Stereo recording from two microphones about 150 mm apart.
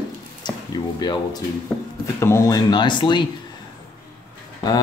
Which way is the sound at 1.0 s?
30° left (ahead or behind).